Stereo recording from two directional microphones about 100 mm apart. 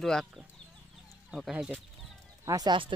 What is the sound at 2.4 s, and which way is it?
Speech, 40° right (ahead or behind).